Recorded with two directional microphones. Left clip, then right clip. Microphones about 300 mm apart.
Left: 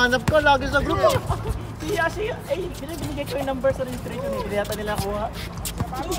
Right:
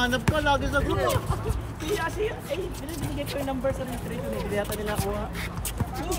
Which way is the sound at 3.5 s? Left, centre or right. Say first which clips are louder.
Left 7 dB; left.